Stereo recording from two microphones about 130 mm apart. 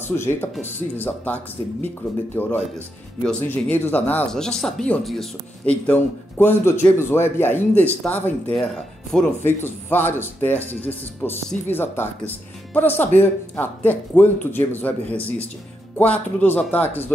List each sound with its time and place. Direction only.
0.1 s speech: 20° left (ahead or behind); by 5.8 s centre (ahead or behind)
5.9 s speech: 15° left (ahead or behind)